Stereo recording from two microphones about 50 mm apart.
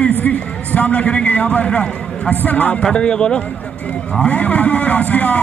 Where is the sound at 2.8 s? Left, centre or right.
Centre.